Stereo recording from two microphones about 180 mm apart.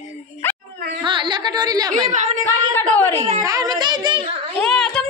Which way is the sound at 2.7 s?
10° left (ahead or behind).